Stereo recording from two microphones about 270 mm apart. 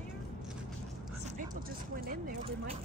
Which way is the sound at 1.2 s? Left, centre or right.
Right.